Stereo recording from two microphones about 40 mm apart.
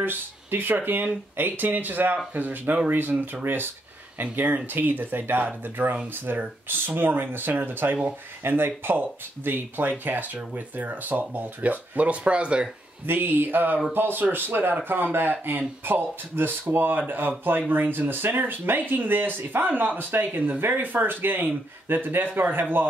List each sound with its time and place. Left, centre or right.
0.0 s speech: right
4.2 s speech: right
6.3 s speech: right
6.7 s speech: right
12.1 s speech: right
13.0 s speech: right